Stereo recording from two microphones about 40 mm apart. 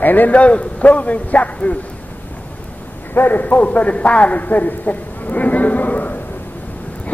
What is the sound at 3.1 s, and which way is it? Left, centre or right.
A man's voice, left.